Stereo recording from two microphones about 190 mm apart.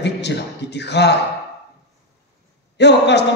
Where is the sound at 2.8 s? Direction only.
65° left (ahead or behind).